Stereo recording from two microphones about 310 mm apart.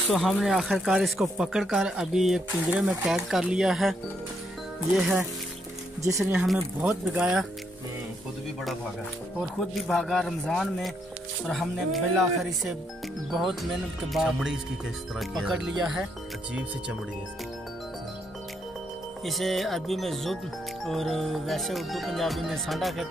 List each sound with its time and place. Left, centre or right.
0.1 s speech: centre
6.0 s speech: centre
9.4 s speech: centre
13.3 s speech: centre
19.2 s speech: centre